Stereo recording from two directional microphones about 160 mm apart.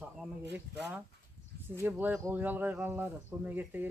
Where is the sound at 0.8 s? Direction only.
90° right.